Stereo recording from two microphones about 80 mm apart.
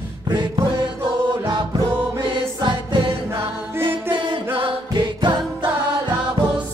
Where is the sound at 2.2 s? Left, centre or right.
Right.